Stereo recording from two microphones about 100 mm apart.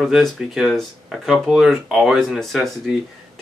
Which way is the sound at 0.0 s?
Centre (ahead or behind).